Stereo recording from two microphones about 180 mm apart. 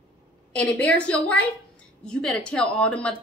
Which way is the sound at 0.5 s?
10° left (ahead or behind).